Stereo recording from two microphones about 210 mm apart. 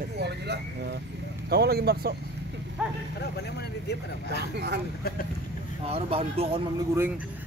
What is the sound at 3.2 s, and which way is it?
Speech, 50° left (ahead or behind).